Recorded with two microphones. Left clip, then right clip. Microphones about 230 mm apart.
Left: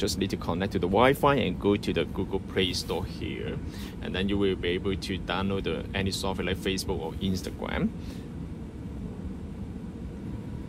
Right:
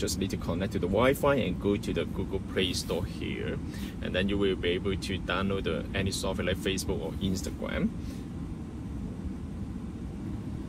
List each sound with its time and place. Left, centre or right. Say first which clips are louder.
0.0 s speech: left 3 dB; left